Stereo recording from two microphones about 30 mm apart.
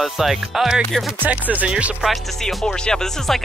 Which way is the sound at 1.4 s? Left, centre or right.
Right.